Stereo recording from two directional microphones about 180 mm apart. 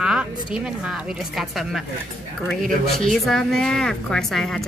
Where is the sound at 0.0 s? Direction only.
5° right (ahead or behind).